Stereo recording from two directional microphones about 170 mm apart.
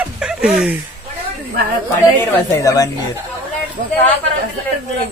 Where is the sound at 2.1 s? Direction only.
20° left (ahead or behind).